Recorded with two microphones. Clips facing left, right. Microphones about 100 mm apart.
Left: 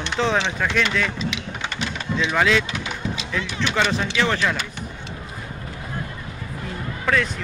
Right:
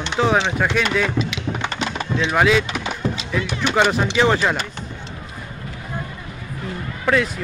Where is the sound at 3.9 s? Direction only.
20° right (ahead or behind).